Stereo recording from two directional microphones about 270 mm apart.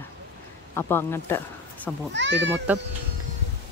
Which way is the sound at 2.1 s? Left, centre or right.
Right.